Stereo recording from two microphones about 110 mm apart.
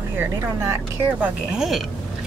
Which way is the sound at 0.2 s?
20° right (ahead or behind).